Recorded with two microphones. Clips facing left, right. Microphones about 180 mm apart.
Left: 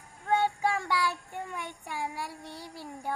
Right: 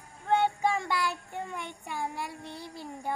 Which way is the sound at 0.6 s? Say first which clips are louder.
Even; 15° right (ahead or behind).